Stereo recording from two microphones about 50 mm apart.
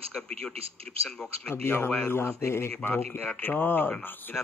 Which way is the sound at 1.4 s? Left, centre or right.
Left.